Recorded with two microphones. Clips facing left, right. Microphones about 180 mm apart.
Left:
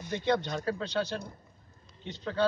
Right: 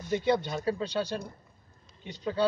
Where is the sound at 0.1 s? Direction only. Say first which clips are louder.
Right 2 dB; 10° right (ahead or behind).